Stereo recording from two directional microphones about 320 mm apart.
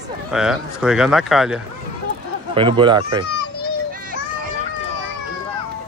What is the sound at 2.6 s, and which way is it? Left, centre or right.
Speech, centre.